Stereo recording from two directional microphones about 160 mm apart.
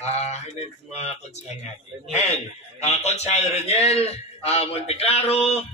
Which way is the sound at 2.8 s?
45° left (ahead or behind).